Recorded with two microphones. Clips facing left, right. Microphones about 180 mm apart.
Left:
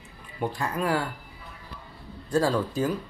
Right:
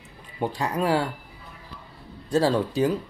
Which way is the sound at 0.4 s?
20° right (ahead or behind).